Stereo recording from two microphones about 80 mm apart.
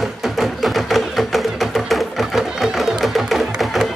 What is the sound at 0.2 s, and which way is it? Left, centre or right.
Music, centre.